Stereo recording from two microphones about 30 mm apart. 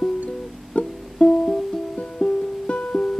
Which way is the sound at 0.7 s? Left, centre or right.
Left.